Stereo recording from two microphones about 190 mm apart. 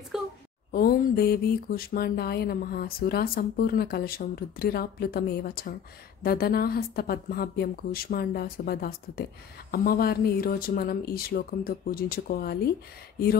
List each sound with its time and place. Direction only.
0.7 s speech: 50° left (ahead or behind)